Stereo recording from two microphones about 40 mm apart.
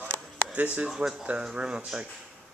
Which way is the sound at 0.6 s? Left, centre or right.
Right.